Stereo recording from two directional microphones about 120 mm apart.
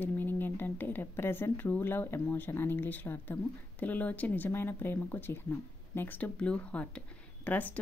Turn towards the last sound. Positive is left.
turn(degrees=15)  # may be behind; listen again after turning